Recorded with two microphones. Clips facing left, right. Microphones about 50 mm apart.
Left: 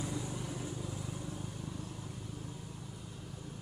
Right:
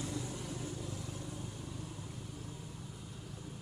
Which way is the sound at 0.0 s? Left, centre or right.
Centre.